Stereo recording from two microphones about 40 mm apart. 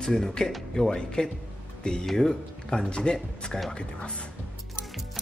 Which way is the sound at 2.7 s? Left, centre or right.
Left.